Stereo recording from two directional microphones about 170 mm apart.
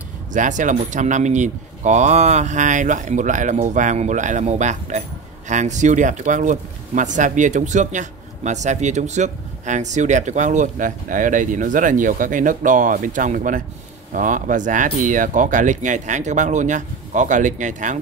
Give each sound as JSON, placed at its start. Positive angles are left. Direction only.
{"t": 0.3, "sound": "speech", "side_deg": -50}